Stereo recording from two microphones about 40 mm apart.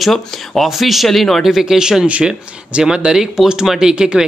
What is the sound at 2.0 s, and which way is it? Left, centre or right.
Speech, right.